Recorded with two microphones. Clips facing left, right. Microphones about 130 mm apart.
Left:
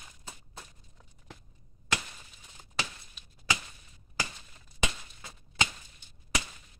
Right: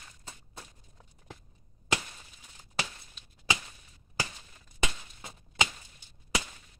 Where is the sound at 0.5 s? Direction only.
15° right (ahead or behind).